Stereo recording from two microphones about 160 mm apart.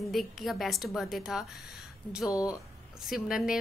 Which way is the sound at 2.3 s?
20° left (ahead or behind).